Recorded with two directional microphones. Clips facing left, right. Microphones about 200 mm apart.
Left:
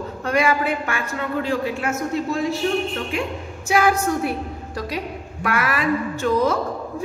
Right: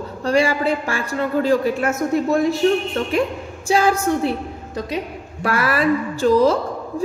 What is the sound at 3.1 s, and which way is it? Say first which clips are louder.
A woman's voice: right 5 dB; 35° right (ahead or behind).